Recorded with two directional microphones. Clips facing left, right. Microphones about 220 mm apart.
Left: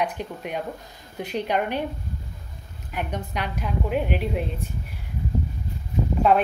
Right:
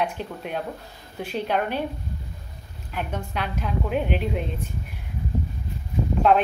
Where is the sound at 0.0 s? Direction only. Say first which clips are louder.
Even; 10° left (ahead or behind).